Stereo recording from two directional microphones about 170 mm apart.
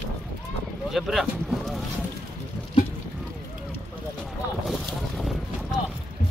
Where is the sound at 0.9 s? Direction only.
Centre (ahead or behind).